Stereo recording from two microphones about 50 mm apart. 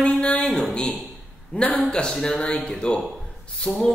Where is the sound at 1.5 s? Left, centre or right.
Left.